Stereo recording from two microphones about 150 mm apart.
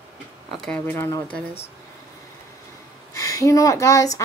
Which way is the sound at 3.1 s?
20° left (ahead or behind).